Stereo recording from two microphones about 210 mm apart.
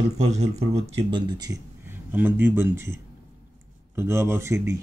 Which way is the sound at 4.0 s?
10° right (ahead or behind).